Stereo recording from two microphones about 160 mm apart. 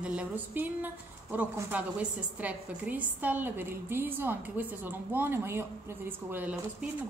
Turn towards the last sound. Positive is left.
turn(degrees=-10)  # may be behind; listen again after turning